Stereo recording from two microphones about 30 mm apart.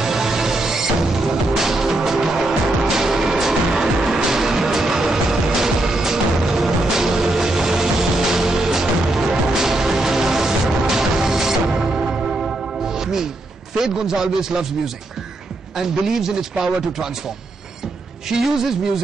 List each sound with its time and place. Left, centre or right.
0.0 s music: centre
13.7 s a man's voice: centre
15.7 s a man's voice: centre
18.4 s a man's voice: centre